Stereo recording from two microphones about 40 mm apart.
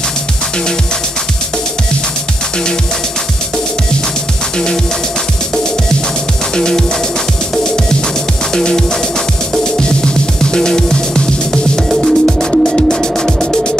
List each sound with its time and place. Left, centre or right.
6.5 s music: centre
9.8 s music: left
11.9 s music: centre
12.6 s music: centre